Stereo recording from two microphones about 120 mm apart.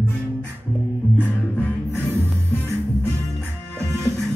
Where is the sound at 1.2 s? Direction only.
15° left (ahead or behind).